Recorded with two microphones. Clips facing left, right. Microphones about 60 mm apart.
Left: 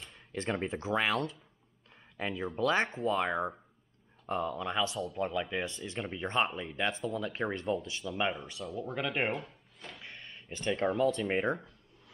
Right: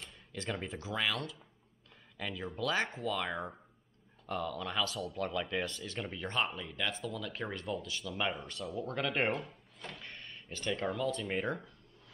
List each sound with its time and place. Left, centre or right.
0.3 s speech: left; by 5.8 s centre
6.1 s speech: left
8.3 s speech: centre
8.8 s a sound: centre
10.8 s speech: left